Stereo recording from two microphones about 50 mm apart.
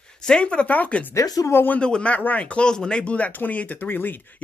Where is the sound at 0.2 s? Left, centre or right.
Centre.